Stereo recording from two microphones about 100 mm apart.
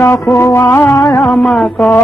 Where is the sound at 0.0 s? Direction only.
25° left (ahead or behind).